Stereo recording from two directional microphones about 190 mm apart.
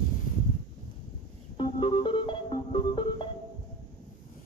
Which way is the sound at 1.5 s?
25° left (ahead or behind).